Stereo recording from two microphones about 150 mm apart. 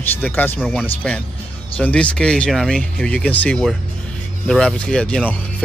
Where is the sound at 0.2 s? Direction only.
10° left (ahead or behind).